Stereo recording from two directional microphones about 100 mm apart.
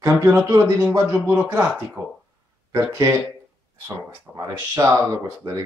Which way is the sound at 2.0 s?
15° right (ahead or behind).